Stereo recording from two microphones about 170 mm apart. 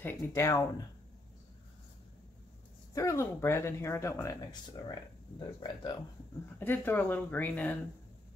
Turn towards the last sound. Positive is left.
turn(degrees=10)  # may be behind; listen again after turning